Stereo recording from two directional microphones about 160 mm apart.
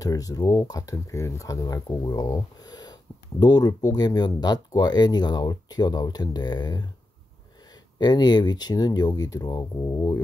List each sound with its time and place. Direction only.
0.0 s speech: 20° left (ahead or behind)
8.0 s speech: 25° left (ahead or behind)